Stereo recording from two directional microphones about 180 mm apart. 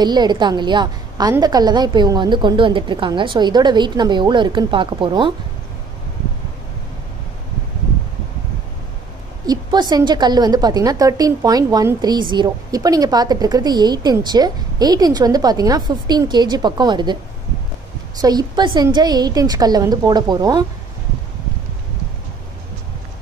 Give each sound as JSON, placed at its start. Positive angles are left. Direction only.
{"t": 0.0, "sound": "a woman's voice", "side_deg": -25}
{"t": 9.5, "sound": "a woman's voice", "side_deg": -25}
{"t": 18.2, "sound": "a woman's voice", "side_deg": -25}